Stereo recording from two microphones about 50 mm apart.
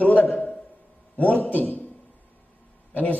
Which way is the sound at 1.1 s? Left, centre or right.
Left.